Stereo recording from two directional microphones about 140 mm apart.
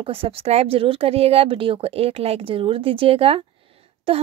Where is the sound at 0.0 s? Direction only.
40° right (ahead or behind).